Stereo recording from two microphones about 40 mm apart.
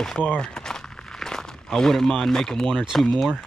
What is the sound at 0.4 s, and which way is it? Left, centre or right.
Walk, centre.